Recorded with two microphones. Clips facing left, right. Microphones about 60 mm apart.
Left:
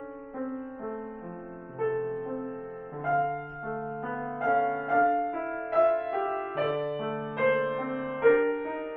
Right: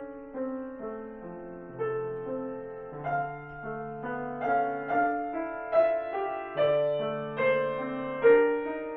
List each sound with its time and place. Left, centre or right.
0.4 s music: centre